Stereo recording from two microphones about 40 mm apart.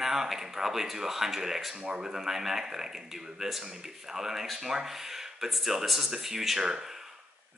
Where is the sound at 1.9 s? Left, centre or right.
Right.